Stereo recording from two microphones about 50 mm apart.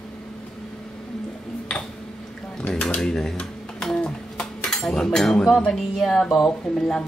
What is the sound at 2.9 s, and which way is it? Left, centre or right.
Speech, centre.